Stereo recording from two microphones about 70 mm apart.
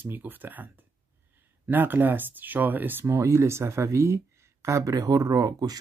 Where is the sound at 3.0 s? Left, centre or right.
Right.